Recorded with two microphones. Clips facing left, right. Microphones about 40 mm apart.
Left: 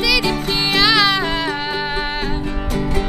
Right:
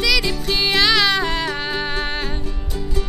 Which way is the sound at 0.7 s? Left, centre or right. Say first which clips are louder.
Left 2 dB; centre.